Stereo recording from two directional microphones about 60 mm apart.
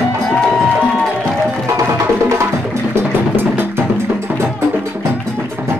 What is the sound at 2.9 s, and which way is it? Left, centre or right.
Music, right.